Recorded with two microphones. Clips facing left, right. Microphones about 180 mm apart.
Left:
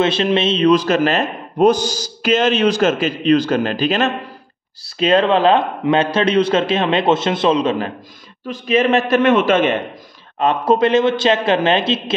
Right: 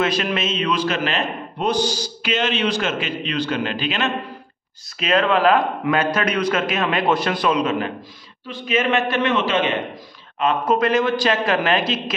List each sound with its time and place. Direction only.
0.0 s a man's voice: 25° left (ahead or behind)
8.5 s a man's voice: 40° left (ahead or behind)
10.4 s speech: 30° left (ahead or behind)